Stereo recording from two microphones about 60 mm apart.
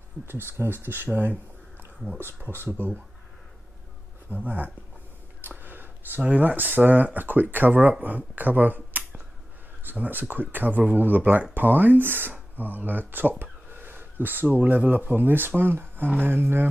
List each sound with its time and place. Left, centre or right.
0.3 s speech: right
4.3 s speech: right
5.4 s a sound: right
6.2 s speech: right